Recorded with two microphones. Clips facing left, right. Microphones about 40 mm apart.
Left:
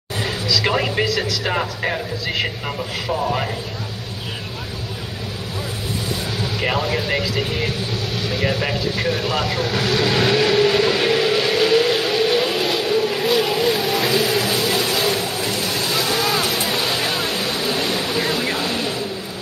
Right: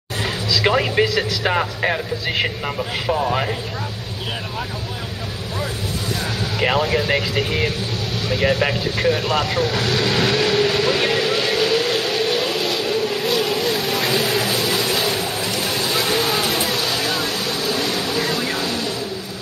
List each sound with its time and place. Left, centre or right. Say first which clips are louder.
0.5 s a sound: right 2 dB; right
0.7 s speech: right 2 dB; centre
1.0 s speech: right 2 dB; right
1.5 s speech: right 3 dB; centre
6.6 s speech: right 3 dB; centre
8.3 s vehicle: right 4 dB; centre
16.7 s vehicle: even; centre